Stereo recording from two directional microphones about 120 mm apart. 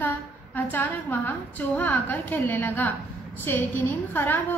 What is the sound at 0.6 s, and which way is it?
A woman's voice, 15° left (ahead or behind).